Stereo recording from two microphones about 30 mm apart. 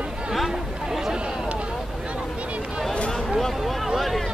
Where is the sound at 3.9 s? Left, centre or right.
Centre.